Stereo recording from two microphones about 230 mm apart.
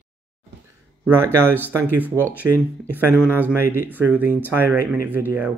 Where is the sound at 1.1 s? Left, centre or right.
Centre.